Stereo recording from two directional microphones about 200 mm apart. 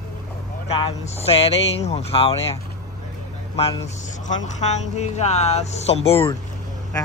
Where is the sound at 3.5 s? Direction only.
30° left (ahead or behind).